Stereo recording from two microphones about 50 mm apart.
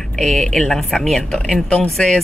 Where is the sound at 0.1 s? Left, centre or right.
Centre.